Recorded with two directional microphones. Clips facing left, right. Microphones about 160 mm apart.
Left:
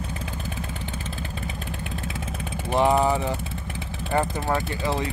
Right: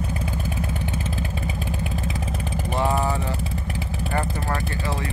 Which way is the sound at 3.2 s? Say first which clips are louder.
Even; centre (ahead or behind).